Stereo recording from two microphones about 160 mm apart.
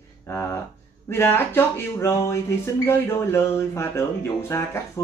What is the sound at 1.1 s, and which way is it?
Speech, 15° left (ahead or behind).